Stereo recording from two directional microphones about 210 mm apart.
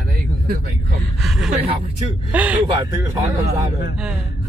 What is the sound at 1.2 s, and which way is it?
Speech, centre (ahead or behind).